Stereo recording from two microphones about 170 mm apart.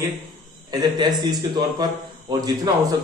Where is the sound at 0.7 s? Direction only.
25° right (ahead or behind).